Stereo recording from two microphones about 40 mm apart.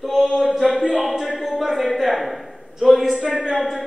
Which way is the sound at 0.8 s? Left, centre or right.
Centre.